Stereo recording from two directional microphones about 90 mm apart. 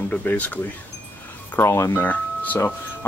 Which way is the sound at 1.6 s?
30° left (ahead or behind).